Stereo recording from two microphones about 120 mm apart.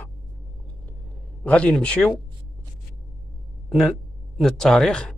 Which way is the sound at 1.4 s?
10° left (ahead or behind).